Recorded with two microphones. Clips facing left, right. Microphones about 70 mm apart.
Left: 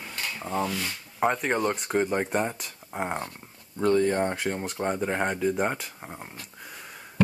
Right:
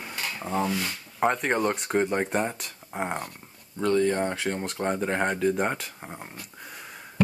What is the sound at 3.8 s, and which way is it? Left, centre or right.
Speech, left.